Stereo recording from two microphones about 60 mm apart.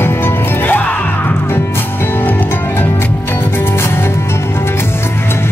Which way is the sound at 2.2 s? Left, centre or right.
Left.